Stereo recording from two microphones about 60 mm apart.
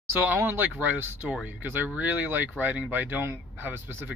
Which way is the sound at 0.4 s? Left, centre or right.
Right.